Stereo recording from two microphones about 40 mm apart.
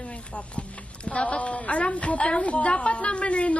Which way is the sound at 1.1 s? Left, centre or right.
Left.